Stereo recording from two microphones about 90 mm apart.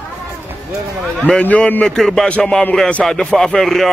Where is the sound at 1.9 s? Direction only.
5° left (ahead or behind).